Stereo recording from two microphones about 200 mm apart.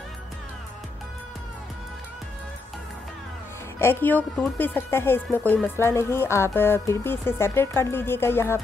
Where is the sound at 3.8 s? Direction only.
10° left (ahead or behind).